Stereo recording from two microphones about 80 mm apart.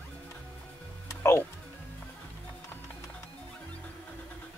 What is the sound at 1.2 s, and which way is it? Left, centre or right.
Music, left.